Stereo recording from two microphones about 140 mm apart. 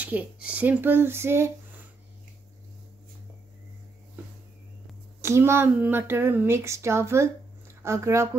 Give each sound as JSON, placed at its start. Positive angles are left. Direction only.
{"t": 0.0, "sound": "speech", "side_deg": -10}
{"t": 5.2, "sound": "speech", "side_deg": -20}